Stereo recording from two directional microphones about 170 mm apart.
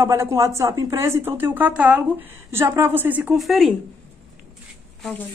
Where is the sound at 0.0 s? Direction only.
15° right (ahead or behind); by 3.7 s centre (ahead or behind).